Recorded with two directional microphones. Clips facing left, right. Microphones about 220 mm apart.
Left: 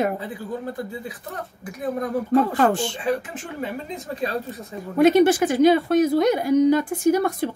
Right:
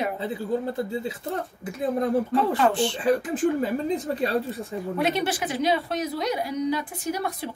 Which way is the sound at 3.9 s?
30° right (ahead or behind).